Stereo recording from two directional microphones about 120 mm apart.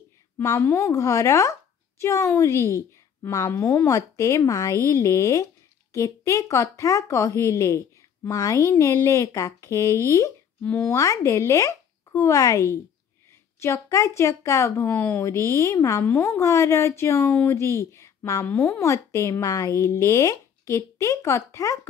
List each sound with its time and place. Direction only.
0.4 s a woman's voice: 25° left (ahead or behind)